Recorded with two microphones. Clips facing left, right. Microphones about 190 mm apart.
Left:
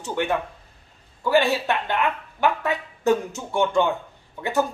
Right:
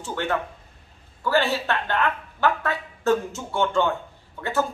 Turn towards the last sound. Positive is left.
turn(degrees=15)  # may be behind; listen again after turning